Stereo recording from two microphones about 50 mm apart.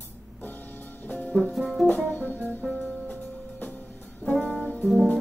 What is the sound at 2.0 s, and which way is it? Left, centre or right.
Music, left.